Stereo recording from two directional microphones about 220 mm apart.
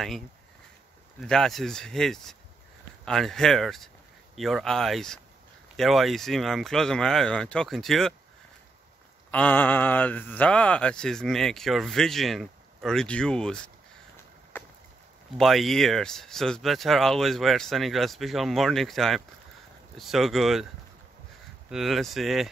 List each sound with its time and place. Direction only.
1.2 s speech: 5° left (ahead or behind)
9.3 s speech: 5° left (ahead or behind)
14.5 s a sound: 10° left (ahead or behind)
15.3 s speech: centre (ahead or behind)
21.6 s speech: centre (ahead or behind)